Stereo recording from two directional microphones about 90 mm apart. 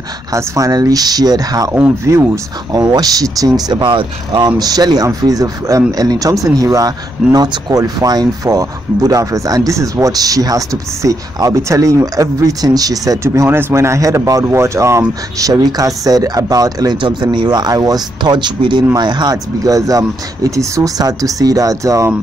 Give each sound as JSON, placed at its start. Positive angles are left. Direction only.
{"t": 0.3, "sound": "speech", "side_deg": -40}
{"t": 2.7, "sound": "speech", "side_deg": -45}
{"t": 4.5, "sound": "speech", "side_deg": -45}
{"t": 7.3, "sound": "speech", "side_deg": -50}
{"t": 16.9, "sound": "speech", "side_deg": -60}
{"t": 19.3, "sound": "speech", "side_deg": -40}